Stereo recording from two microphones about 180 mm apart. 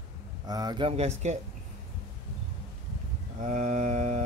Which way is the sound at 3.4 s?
45° right (ahead or behind).